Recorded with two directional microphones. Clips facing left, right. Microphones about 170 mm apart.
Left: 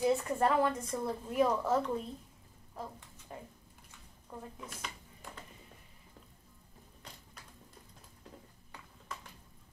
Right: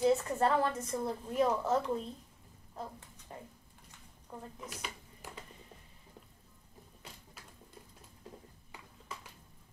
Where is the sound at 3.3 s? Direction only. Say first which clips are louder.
Left 1 dB; 25° right (ahead or behind).